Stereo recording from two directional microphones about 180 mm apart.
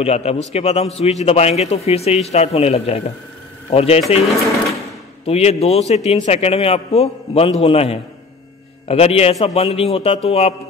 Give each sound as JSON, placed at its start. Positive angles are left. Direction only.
{"t": 0.0, "sound": "a man's voice", "side_deg": 35}
{"t": 5.2, "sound": "a man's voice", "side_deg": 35}